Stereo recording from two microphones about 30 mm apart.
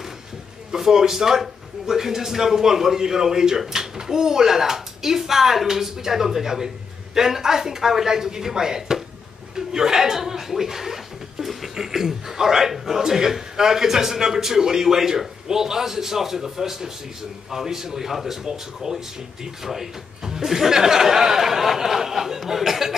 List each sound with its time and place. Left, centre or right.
0.7 s a man's voice: centre